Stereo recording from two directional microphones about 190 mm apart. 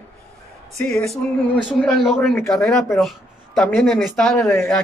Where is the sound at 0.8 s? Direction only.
5° left (ahead or behind).